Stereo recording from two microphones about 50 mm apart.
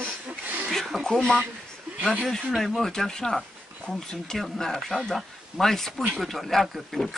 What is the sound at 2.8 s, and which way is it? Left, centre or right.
Speech, centre.